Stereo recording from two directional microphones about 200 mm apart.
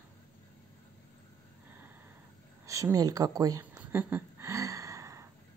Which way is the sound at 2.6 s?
15° right (ahead or behind).